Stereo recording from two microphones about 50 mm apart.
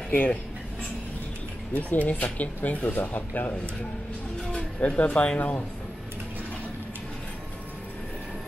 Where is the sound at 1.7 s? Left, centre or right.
Left.